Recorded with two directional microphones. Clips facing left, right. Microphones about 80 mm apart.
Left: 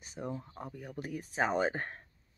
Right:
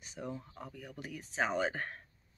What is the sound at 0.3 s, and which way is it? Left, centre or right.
Speech, left.